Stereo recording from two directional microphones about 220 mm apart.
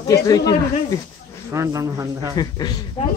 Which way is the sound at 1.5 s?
15° right (ahead or behind).